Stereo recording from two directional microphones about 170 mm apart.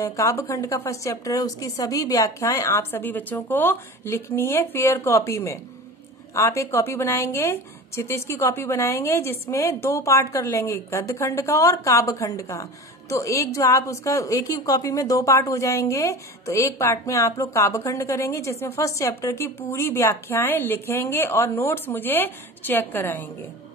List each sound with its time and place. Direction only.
0.0 s a woman's voice: 20° left (ahead or behind)